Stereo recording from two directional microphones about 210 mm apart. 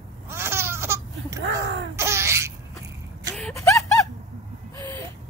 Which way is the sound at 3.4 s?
10° left (ahead or behind).